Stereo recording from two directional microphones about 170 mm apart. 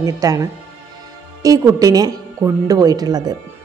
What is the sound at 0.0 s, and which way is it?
A woman's voice, 20° right (ahead or behind).